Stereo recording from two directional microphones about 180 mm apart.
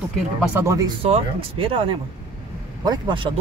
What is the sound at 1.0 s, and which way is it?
Speech, 30° right (ahead or behind).